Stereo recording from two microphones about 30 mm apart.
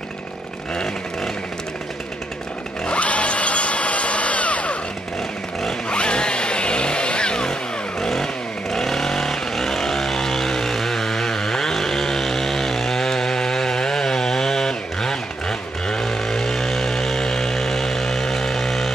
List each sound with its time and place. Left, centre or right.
3.0 s drill: left
5.9 s chainsaw: left
8.0 s vehicle: centre